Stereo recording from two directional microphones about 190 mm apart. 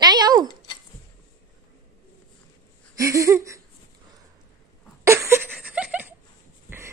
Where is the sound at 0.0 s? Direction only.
20° right (ahead or behind).